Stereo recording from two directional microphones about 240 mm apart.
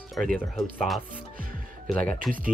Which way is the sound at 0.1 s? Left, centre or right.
Centre.